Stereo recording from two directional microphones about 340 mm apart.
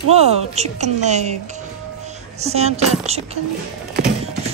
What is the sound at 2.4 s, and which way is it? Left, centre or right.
Speech, centre.